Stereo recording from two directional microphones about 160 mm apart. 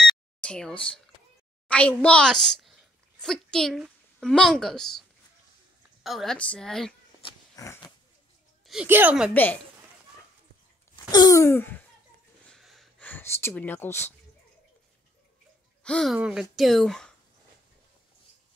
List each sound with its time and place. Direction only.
0.0 s a sound: 5° left (ahead or behind)
1.7 s a child's voice: 10° left (ahead or behind)
6.0 s speech: centre (ahead or behind)
7.5 s pig: 20° left (ahead or behind)
8.8 s a woman's voice: 10° right (ahead or behind)
9.3 s speech: 10° left (ahead or behind)
11.1 s speech: 25° left (ahead or behind)
12.4 s gasp: centre (ahead or behind)
13.1 s speech: 15° left (ahead or behind)
15.8 s speech: 5° left (ahead or behind)